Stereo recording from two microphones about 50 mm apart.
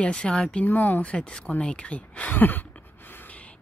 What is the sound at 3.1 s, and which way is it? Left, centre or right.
Gasp, left.